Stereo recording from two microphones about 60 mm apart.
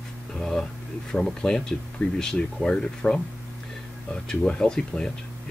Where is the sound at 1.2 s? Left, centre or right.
Centre.